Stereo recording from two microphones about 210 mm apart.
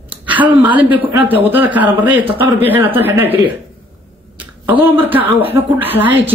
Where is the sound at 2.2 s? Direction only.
25° right (ahead or behind).